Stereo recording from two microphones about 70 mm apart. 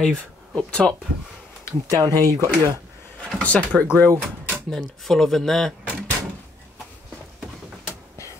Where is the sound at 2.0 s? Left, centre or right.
Right.